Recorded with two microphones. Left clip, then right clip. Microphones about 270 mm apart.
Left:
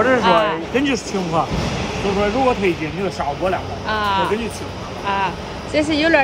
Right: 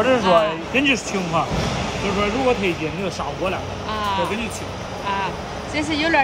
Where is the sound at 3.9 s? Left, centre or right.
Centre.